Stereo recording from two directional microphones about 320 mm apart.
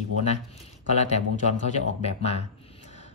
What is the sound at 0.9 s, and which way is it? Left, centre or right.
Speech, left.